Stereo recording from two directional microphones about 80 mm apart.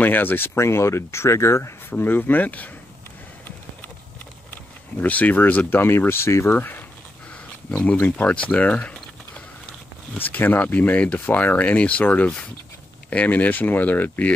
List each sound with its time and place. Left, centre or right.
0.0 s speech: left
5.0 s speech: centre